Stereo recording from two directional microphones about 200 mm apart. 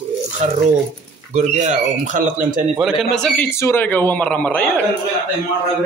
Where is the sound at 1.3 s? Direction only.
35° right (ahead or behind).